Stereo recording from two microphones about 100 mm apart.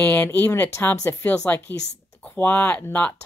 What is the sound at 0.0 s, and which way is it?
Speech, 15° left (ahead or behind).